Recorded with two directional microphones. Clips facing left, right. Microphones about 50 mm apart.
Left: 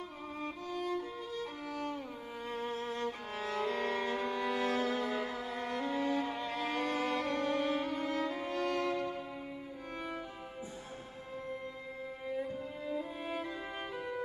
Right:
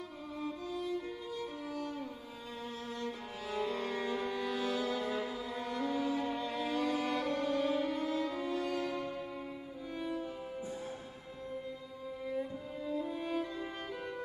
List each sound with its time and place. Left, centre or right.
0.4 s violin: left
2.5 s music: left
12.3 s music: centre